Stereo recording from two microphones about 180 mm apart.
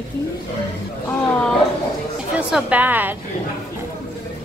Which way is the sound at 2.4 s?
5° right (ahead or behind).